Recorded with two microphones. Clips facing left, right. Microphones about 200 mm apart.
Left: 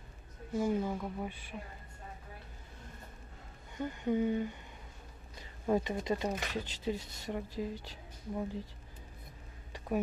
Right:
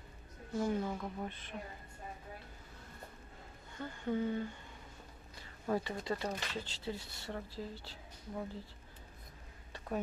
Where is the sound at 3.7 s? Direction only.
15° left (ahead or behind).